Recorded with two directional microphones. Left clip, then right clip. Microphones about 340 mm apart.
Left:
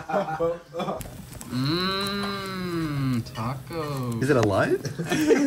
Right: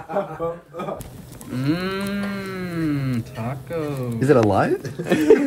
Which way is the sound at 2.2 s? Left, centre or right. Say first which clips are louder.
Right 1 dB; centre.